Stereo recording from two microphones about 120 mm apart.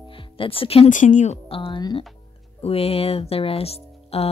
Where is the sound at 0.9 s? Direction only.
90° left.